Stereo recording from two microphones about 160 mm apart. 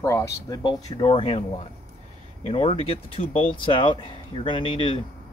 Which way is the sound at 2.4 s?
40° left (ahead or behind).